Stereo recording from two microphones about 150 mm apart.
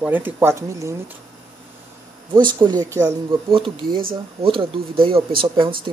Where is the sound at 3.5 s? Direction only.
35° right (ahead or behind).